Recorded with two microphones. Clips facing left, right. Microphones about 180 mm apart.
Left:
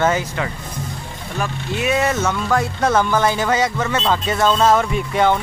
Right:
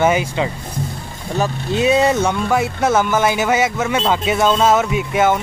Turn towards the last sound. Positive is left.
turn(degrees=-5)  # may be behind; listen again after turning